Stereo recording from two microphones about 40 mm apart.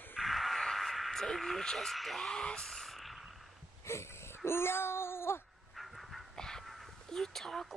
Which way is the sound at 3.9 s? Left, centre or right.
Left.